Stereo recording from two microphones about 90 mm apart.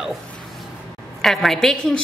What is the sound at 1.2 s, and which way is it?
Speech, 5° left (ahead or behind).